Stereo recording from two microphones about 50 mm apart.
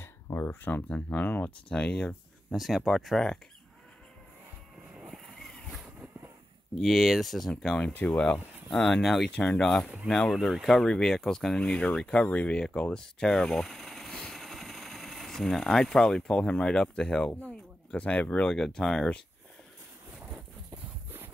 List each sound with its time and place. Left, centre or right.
0.0 s a sound: left
0.5 s speech: left
0.8 s speech: left
1.2 s speech: left
1.7 s speech: left
2.5 s speech: centre
5.1 s vehicle: centre
6.7 s speech: centre
7.9 s speech: left
8.6 s speech: centre
10.8 s speech: centre
12.9 s vehicle: centre
15.5 s speech: centre
18.5 s speech: centre